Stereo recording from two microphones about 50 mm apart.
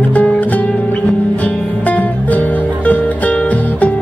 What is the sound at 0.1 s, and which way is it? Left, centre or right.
Music, left.